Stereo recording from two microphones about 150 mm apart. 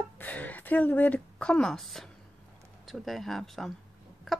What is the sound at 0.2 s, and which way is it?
A woman's voice, 10° left (ahead or behind).